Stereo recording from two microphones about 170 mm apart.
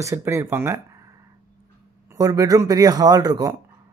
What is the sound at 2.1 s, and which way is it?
A man's voice, 20° right (ahead or behind).